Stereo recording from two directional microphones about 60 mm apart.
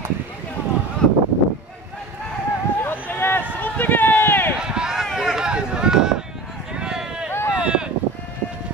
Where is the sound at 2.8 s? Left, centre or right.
Left.